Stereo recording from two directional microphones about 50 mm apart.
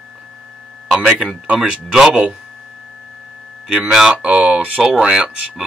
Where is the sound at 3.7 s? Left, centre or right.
Centre.